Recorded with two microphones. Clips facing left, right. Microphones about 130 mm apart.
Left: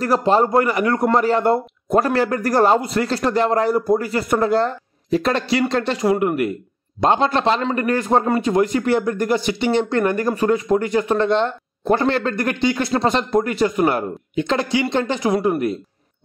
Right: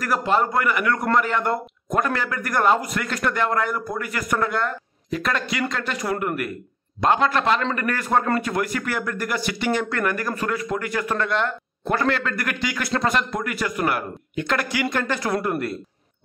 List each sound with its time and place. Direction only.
0.0 s a man's voice: 35° left (ahead or behind); by 15.8 s 15° left (ahead or behind)